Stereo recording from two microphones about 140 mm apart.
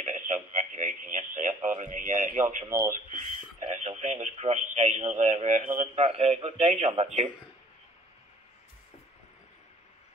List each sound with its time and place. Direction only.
0.0 s radio: 60° right (ahead or behind)
2.7 s speech: 20° right (ahead or behind)
3.6 s speech: 55° right (ahead or behind)
5.9 s a man's voice: 50° right (ahead or behind)
6.6 s speech: 60° right (ahead or behind)